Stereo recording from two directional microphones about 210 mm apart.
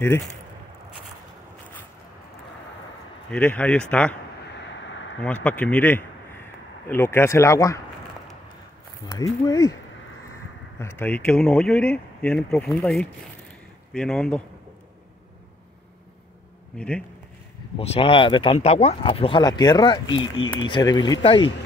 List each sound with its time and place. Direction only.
3.3 s speech: 5° left (ahead or behind)
5.2 s speech: 5° left (ahead or behind)
9.0 s speech: 20° left (ahead or behind)
10.8 s speech: 10° left (ahead or behind)
16.7 s speech: 5° left (ahead or behind)
17.7 s speech: 30° left (ahead or behind)